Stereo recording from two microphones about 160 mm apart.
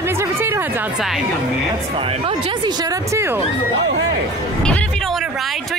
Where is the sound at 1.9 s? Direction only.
35° right (ahead or behind); by 3.4 s 15° right (ahead or behind).